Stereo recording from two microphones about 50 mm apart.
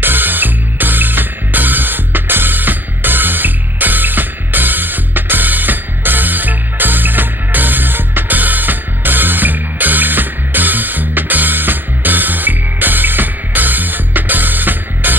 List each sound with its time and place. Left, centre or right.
0.0 s music: right